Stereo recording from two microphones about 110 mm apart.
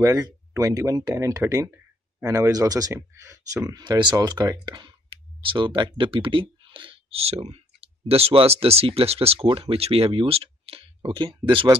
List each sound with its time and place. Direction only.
0.0 s speech: 30° right (ahead or behind); by 11.6 s 50° right (ahead or behind)